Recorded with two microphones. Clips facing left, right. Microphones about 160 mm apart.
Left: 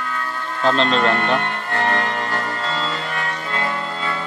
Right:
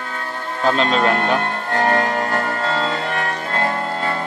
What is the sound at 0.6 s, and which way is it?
Speech, 5° right (ahead or behind).